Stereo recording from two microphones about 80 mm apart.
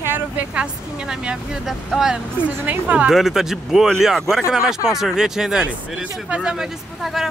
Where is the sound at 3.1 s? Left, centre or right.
Centre.